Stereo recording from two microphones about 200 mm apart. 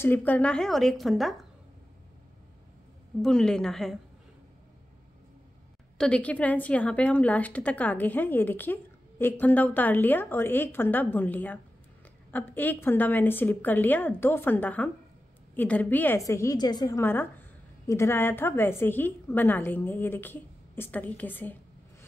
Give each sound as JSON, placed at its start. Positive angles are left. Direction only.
{"t": 0.0, "sound": "a woman's voice", "side_deg": 10}
{"t": 3.2, "sound": "a woman's voice", "side_deg": 5}
{"t": 5.9, "sound": "a woman's voice", "side_deg": 5}